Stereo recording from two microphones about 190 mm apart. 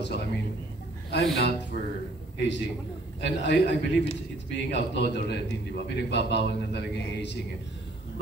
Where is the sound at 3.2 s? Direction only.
65° left (ahead or behind).